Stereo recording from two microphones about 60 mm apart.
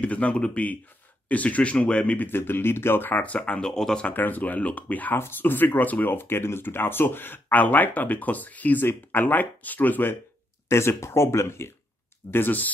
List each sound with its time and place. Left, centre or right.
0.0 s speech: left
2.2 s speech: left
3.2 s speech: left
4.1 s speech: left
10.7 s speech: left
12.3 s speech: left